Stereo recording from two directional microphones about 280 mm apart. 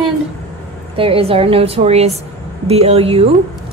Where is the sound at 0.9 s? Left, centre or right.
Centre.